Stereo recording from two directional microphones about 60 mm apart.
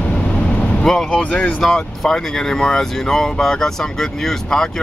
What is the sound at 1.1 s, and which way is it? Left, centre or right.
Speech, centre.